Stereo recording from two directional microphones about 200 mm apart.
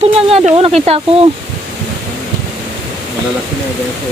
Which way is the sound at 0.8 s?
30° right (ahead or behind).